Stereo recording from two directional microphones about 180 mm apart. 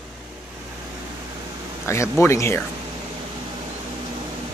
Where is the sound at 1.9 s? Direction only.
15° left (ahead or behind).